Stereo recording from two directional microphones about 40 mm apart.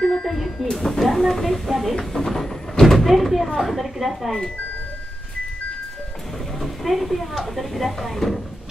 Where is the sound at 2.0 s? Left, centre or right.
Centre.